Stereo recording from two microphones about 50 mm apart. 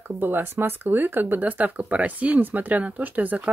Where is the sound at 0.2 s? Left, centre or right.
Right.